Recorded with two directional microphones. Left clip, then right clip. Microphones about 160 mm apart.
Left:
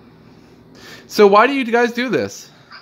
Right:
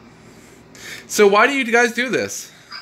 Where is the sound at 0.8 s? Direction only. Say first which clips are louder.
Left 2 dB; 30° left (ahead or behind).